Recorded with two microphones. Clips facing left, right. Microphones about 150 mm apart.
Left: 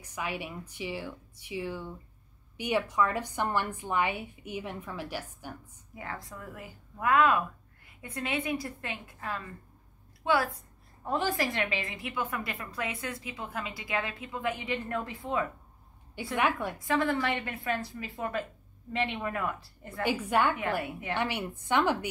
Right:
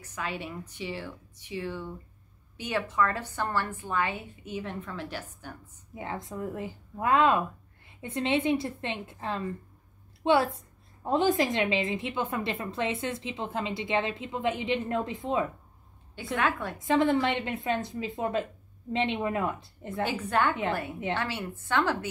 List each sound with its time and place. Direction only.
0.0 s a woman's voice: 15° left (ahead or behind)
5.9 s a woman's voice: 20° right (ahead or behind)
16.3 s a woman's voice: 15° left (ahead or behind)
16.7 s a woman's voice: 20° right (ahead or behind)
20.1 s a woman's voice: 10° left (ahead or behind)